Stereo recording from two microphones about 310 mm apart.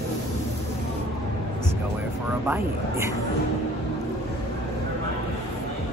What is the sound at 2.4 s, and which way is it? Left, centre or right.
Speech, centre.